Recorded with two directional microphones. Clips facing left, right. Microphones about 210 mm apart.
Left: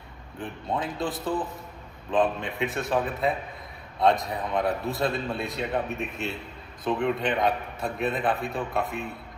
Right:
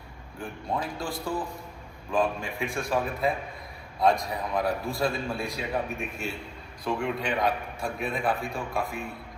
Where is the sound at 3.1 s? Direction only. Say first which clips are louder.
Left 1 dB; centre (ahead or behind).